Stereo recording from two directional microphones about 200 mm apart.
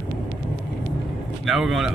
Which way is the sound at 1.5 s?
Centre (ahead or behind).